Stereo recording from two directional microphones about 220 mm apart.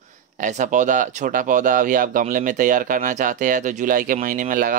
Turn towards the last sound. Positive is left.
turn(degrees=-40)  # may be behind; listen again after turning